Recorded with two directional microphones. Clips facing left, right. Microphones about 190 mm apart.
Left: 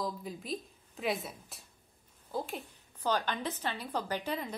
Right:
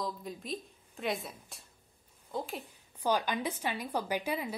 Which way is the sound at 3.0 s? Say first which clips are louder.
Right 2 dB; 10° right (ahead or behind).